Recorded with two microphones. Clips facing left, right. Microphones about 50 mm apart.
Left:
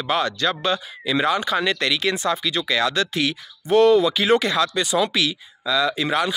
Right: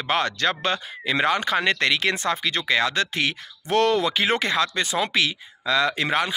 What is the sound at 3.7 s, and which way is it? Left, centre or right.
Speech, right.